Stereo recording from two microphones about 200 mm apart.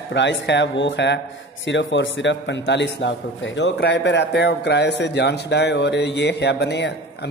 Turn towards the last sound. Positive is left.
turn(degrees=60)  # may be behind; listen again after turning